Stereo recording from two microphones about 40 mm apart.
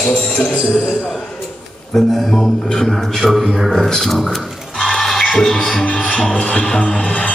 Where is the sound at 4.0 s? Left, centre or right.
Centre.